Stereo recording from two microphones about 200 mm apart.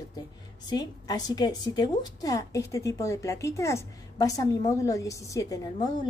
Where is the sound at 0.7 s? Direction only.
20° left (ahead or behind).